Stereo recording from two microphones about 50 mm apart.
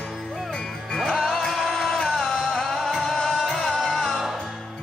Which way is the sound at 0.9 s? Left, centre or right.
Centre.